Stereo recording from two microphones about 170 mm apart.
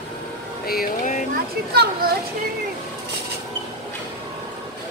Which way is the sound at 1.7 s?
70° right (ahead or behind).